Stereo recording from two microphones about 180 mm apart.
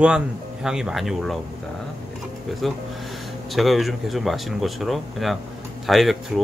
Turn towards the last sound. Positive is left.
turn(degrees=0)  # may be behind; listen again after turning